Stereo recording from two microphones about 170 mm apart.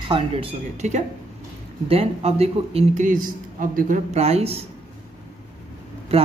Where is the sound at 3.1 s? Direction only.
55° right (ahead or behind); by 4.7 s 35° right (ahead or behind).